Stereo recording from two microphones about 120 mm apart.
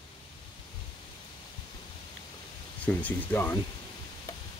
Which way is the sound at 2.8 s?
15° left (ahead or behind).